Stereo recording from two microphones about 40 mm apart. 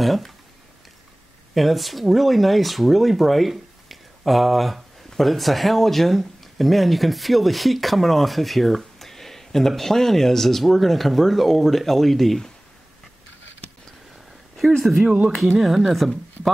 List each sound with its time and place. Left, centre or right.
0.0 s speech: centre
1.5 s speech: centre
14.8 s speech: centre